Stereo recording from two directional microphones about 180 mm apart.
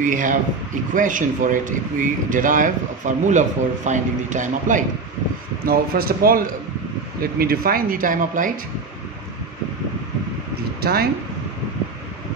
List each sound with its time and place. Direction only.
0.0 s speech: 45° right (ahead or behind)
5.7 s speech: 55° right (ahead or behind)
10.8 s speech: 60° right (ahead or behind)